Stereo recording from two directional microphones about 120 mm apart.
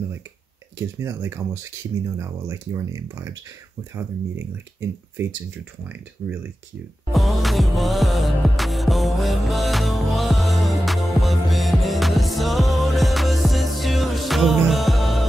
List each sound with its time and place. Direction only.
0.7 s speech: 20° right (ahead or behind)
7.1 s music: centre (ahead or behind)